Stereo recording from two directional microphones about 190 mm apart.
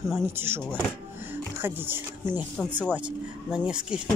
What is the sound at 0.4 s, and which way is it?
Speech, 10° right (ahead or behind).